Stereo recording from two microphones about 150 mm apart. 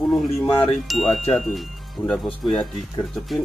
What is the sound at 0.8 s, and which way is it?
Speech, centre (ahead or behind).